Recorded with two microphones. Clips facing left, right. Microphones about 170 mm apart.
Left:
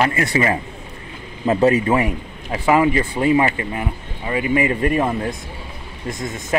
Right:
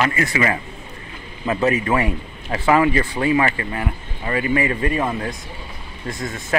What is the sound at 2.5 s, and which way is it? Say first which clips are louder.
A man's voice: left 1 dB; 10° left (ahead or behind).